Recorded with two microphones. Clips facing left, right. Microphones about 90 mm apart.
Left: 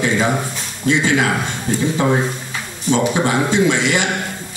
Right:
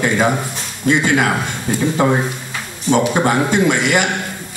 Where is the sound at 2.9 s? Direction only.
50° right (ahead or behind).